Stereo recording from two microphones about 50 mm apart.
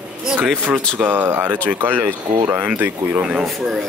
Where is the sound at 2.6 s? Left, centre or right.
Right.